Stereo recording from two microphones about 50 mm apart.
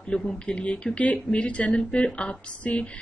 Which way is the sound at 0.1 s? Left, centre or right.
Centre.